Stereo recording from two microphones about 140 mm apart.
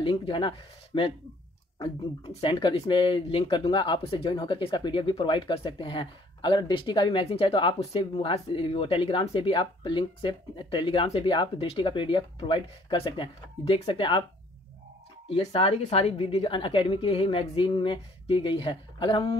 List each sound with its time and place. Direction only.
0.0 s speech: 40° left (ahead or behind)
11.5 s speech: 45° left (ahead or behind)
15.2 s speech: 45° left (ahead or behind)